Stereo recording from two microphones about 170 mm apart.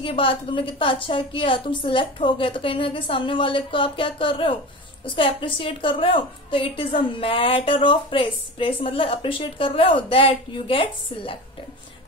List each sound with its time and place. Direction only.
0.0 s a woman's voice: 30° left (ahead or behind)